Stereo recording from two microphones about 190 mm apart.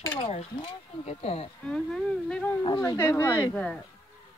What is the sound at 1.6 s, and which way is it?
Speech, 5° left (ahead or behind).